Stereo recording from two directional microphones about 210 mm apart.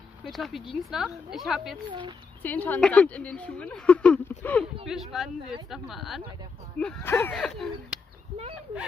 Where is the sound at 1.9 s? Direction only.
20° right (ahead or behind).